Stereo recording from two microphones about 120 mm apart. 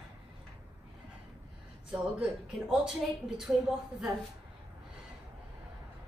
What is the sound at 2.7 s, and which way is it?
A woman's voice, 5° right (ahead or behind).